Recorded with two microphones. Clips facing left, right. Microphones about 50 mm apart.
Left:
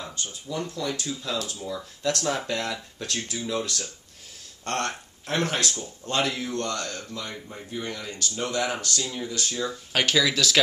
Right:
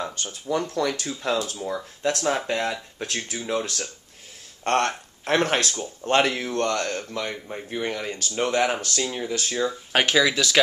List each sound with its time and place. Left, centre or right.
0.0 s speech: right
2.1 s speech: right
9.7 s speech: right